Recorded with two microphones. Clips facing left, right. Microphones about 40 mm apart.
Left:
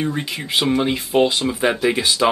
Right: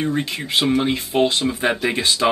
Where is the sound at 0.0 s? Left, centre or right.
Centre.